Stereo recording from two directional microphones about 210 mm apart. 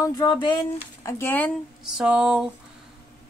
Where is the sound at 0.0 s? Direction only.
15° left (ahead or behind).